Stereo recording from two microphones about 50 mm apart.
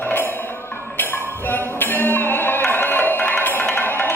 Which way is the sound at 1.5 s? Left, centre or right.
Left.